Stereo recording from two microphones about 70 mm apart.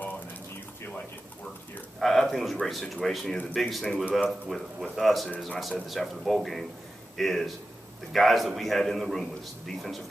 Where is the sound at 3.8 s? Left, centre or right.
Centre.